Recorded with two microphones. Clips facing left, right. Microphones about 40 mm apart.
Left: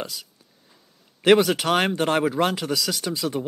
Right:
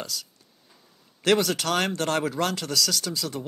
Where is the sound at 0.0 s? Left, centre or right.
Centre.